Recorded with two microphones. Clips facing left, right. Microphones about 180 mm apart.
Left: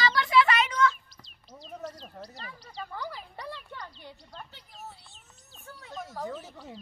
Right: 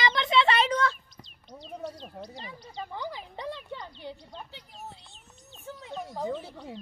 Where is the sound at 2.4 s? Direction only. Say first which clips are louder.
Right 2 dB; 20° right (ahead or behind).